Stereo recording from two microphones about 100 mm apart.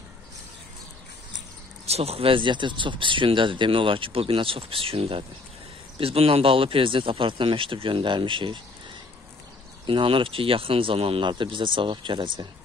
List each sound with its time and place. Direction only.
1.9 s speech: 90° right; by 8.5 s 55° right (ahead or behind)
9.8 s speech: 60° right (ahead or behind)